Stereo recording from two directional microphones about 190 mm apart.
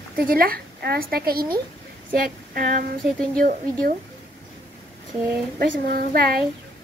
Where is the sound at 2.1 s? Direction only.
50° right (ahead or behind).